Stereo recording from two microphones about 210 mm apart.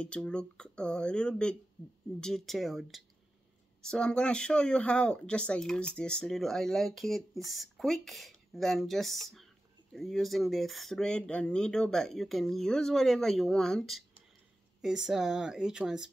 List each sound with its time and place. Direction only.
0.0 s speech: 5° left (ahead or behind)